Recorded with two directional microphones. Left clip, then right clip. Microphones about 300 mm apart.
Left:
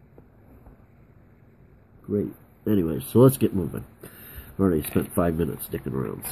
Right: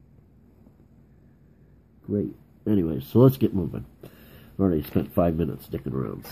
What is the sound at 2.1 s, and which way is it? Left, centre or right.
Speech, centre.